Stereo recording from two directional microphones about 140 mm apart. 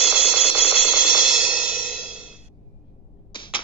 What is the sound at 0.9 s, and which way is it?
Music, 5° right (ahead or behind).